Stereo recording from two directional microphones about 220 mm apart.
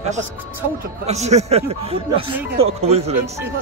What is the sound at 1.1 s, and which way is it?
Speech, 30° right (ahead or behind).